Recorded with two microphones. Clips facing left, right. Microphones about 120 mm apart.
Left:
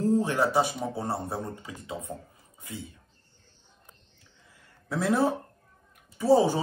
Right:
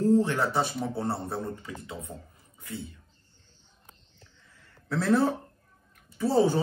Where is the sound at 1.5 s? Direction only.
20° left (ahead or behind).